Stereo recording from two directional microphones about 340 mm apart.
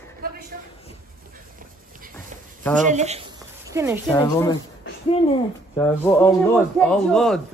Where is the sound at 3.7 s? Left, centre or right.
Centre.